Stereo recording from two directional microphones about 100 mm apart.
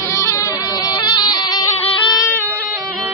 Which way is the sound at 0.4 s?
45° left (ahead or behind).